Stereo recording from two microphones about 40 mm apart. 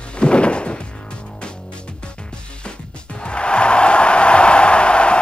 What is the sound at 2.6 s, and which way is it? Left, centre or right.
Music, left.